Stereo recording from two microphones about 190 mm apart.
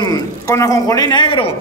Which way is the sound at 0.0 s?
20° left (ahead or behind).